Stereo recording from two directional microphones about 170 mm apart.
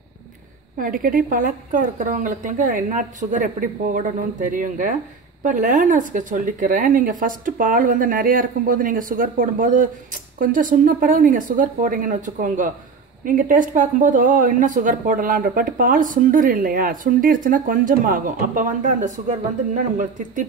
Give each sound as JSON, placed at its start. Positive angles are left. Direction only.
{"t": 0.7, "sound": "speech", "side_deg": -55}